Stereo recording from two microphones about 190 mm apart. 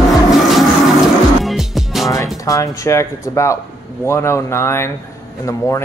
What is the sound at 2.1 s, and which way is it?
Music, 15° left (ahead or behind).